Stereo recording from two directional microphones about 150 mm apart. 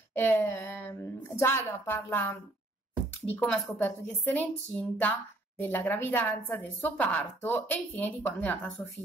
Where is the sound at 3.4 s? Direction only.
10° left (ahead or behind).